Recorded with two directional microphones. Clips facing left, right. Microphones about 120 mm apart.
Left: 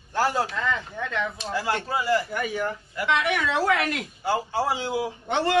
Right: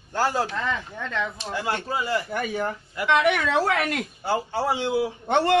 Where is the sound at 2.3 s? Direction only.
35° right (ahead or behind).